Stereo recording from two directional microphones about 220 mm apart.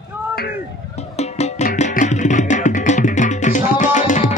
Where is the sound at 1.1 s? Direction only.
30° left (ahead or behind).